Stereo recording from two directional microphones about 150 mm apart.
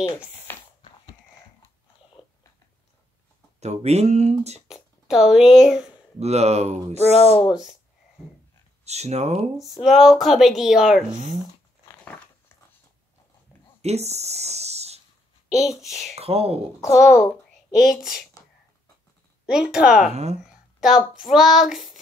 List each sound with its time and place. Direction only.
0.1 s speech: 5° right (ahead or behind)
3.5 s speech: 50° right (ahead or behind)
4.6 s speech: 5° right (ahead or behind)
6.1 s speech: 45° right (ahead or behind)
7.0 s speech: 40° left (ahead or behind)
8.8 s speech: 45° right (ahead or behind)
9.6 s a woman's voice: centre (ahead or behind)
13.7 s speech: 45° right (ahead or behind)
15.6 s a woman's voice: centre (ahead or behind)
16.2 s speech: 45° right (ahead or behind)
16.8 s a child's voice: 20° left (ahead or behind)
17.7 s a woman's voice: centre (ahead or behind)
19.4 s a woman's voice: 5° right (ahead or behind)